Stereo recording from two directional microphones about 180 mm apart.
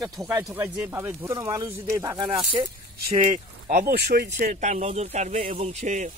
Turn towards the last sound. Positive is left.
turn(degrees=-40)  # may be behind; listen again after turning